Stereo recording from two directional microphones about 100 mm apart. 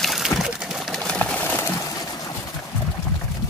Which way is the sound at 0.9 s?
5° left (ahead or behind).